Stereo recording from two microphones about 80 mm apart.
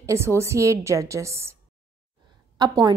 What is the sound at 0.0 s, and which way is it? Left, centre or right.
A woman's voice, right.